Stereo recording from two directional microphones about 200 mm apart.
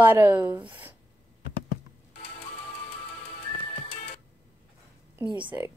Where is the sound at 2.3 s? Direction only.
30° left (ahead or behind).